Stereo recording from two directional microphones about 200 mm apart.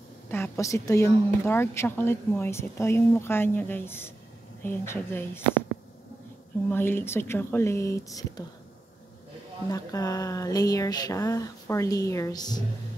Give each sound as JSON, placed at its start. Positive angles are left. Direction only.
{"t": 0.3, "sound": "a woman's voice", "side_deg": 15}
{"t": 6.7, "sound": "a woman's voice", "side_deg": 10}
{"t": 9.7, "sound": "a woman's voice", "side_deg": 20}